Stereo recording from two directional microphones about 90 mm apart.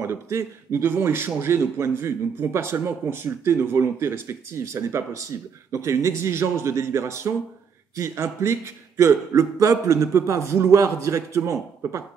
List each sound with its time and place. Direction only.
0.0 s a man's voice: 30° right (ahead or behind)